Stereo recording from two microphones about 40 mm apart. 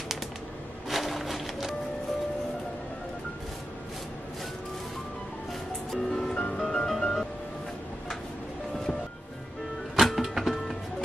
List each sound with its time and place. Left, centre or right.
0.8 s music: centre
5.5 s music: centre
6.1 s music: centre
9.9 s music: centre